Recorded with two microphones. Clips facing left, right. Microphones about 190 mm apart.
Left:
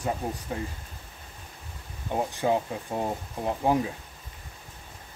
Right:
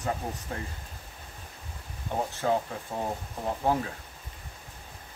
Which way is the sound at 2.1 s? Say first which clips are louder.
Left 2 dB; 15° left (ahead or behind).